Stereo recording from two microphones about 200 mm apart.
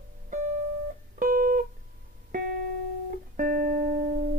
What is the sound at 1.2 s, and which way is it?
Music, 45° right (ahead or behind).